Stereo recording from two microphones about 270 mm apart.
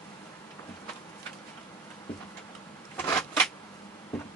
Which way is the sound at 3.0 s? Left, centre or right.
Centre.